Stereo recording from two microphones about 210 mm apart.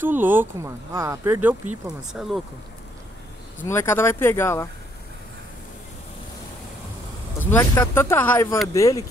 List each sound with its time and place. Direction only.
0.0 s speech: 10° right (ahead or behind)
3.6 s speech: 10° left (ahead or behind)
7.3 s speech: 10° left (ahead or behind)